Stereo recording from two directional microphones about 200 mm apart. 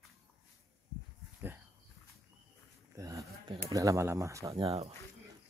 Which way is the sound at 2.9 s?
15° right (ahead or behind).